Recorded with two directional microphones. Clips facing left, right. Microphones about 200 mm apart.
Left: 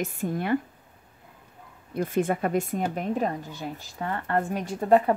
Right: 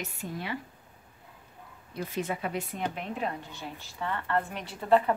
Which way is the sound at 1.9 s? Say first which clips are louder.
Left 8 dB; 50° left (ahead or behind).